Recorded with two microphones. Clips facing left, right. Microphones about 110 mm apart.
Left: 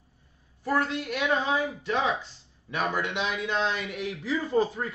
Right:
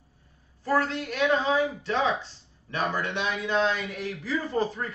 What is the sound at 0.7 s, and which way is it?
A man's voice, 5° left (ahead or behind).